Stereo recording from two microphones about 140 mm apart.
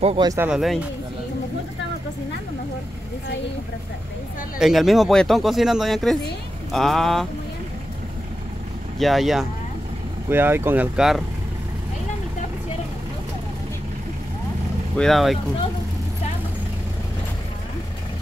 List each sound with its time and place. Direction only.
0.4 s speech: 5° right (ahead or behind)
4.6 s speech: centre (ahead or behind)
8.9 s speech: centre (ahead or behind)
10.3 s speech: 15° right (ahead or behind)
11.0 s speech: centre (ahead or behind)
15.0 s speech: centre (ahead or behind)